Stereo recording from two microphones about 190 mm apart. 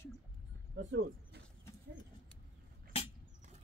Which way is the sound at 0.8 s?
75° right (ahead or behind).